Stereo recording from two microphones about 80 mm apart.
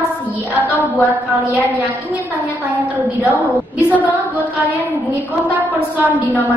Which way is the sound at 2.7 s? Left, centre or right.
Centre.